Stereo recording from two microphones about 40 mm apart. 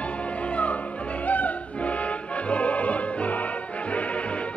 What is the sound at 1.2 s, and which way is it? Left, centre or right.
Music, left.